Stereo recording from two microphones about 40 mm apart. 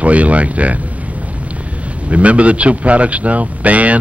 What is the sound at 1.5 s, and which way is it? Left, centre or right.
A man's voice, right.